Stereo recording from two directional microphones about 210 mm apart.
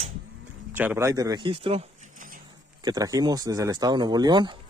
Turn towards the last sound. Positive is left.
turn(degrees=-20)  # may be behind; listen again after turning